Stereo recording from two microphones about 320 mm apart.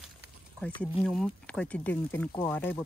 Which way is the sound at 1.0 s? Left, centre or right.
Centre.